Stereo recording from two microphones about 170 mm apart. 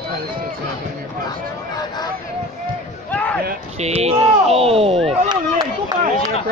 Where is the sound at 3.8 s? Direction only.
35° right (ahead or behind).